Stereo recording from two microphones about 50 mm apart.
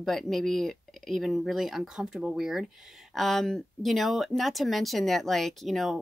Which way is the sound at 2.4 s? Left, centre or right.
Centre.